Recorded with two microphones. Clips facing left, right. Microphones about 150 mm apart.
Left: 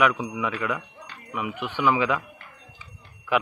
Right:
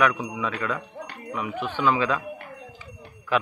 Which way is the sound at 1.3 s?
15° left (ahead or behind).